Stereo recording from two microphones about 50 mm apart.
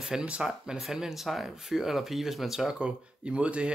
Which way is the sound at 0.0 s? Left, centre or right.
Centre.